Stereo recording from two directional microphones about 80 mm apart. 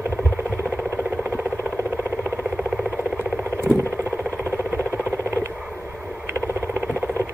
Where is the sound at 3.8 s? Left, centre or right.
Right.